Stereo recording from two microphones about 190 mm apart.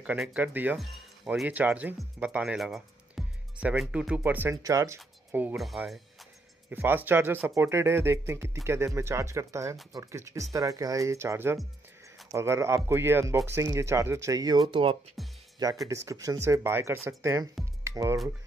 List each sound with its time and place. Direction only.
0.0 s speech: 5° right (ahead or behind)
6.7 s speech: 10° right (ahead or behind); by 15.0 s 30° right (ahead or behind)
15.2 s music: centre (ahead or behind)
15.6 s speech: 20° right (ahead or behind)